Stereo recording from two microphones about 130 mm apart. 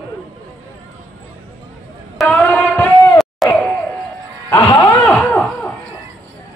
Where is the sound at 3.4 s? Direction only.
Centre (ahead or behind).